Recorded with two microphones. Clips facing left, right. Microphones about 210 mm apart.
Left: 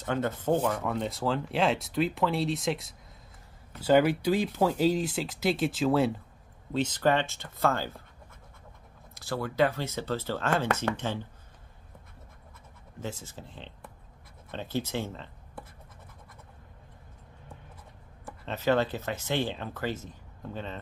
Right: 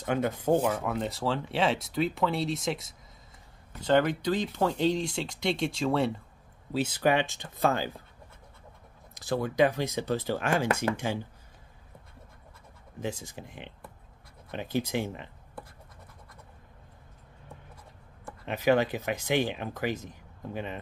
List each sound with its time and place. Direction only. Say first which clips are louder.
0.0 s speech: right 1 dB; 15° right (ahead or behind)
9.1 s speech: right 3 dB; 20° right (ahead or behind)
13.0 s speech: right 3 dB; 15° right (ahead or behind)
18.4 s speech: right 2 dB; 15° right (ahead or behind)